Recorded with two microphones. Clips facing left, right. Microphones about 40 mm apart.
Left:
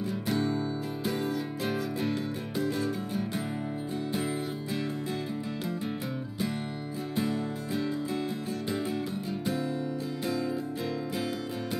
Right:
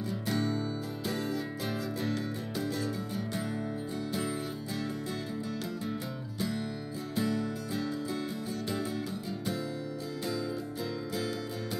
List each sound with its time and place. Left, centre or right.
0.1 s music: left
7.2 s music: left